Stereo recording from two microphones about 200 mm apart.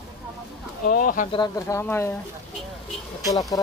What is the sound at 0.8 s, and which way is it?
Speech, 45° left (ahead or behind).